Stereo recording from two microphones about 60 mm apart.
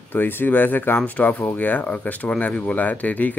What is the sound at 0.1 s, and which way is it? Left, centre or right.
Speech, left.